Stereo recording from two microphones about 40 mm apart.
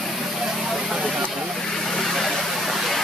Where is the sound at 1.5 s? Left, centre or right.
Centre.